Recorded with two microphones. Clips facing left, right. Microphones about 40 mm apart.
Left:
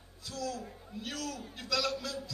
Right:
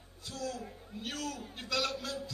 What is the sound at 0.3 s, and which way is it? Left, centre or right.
A man's voice, right.